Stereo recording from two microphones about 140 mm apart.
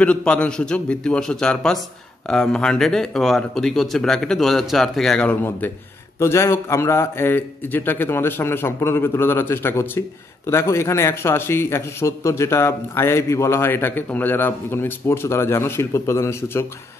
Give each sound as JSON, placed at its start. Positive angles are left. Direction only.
{"t": 0.0, "sound": "a man's voice", "side_deg": 10}